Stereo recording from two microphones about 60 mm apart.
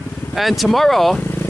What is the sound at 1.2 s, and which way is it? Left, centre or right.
Vehicle, left.